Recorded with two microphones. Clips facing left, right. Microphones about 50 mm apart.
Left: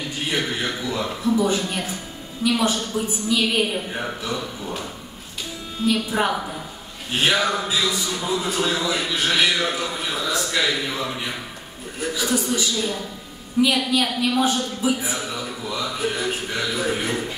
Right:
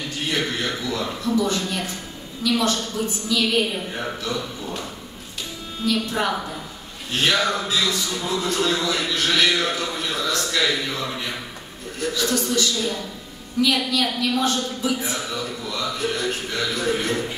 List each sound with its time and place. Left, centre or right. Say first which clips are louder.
0.3 s a man's voice: even; centre
5.9 s a man's voice: left 1 dB; centre